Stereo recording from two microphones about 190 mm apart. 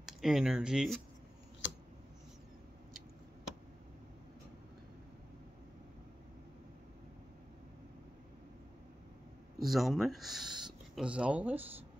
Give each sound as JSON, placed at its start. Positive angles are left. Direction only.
{"t": 0.0, "sound": "speech", "side_deg": 0}
{"t": 1.6, "sound": "a sound", "side_deg": 75}
{"t": 9.6, "sound": "speech", "side_deg": 0}